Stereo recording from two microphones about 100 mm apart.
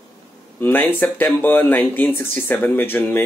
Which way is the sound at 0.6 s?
20° left (ahead or behind).